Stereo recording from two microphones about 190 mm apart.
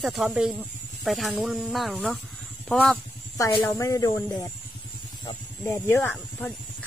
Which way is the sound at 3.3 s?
15° left (ahead or behind).